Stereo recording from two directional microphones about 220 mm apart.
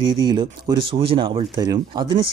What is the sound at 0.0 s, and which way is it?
Speech, 20° right (ahead or behind).